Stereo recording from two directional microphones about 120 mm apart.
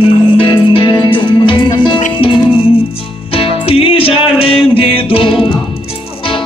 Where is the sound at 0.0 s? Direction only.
45° left (ahead or behind).